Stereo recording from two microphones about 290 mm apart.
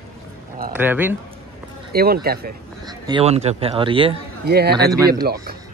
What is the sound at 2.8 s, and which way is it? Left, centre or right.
Speech, centre.